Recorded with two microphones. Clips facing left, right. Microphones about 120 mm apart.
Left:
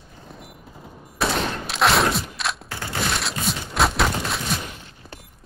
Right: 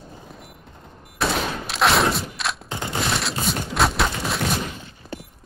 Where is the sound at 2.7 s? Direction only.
20° right (ahead or behind).